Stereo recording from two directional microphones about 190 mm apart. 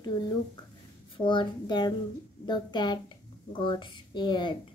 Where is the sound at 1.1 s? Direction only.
25° left (ahead or behind).